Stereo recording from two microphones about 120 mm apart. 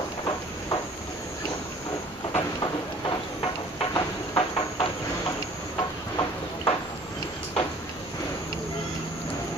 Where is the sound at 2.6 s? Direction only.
35° left (ahead or behind).